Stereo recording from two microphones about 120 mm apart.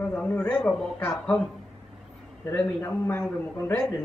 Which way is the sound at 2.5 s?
15° left (ahead or behind).